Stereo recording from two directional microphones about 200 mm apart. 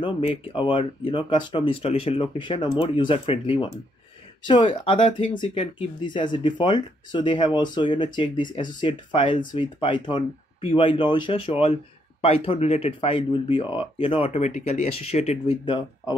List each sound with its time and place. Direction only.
0.6 s speech: 25° left (ahead or behind)